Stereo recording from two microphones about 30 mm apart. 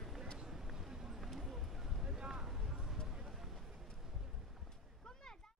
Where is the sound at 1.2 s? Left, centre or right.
Centre.